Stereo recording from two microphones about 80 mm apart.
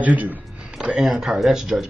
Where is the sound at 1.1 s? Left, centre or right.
Centre.